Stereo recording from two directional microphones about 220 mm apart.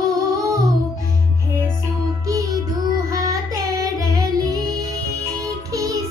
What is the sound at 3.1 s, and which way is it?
Music, 15° right (ahead or behind).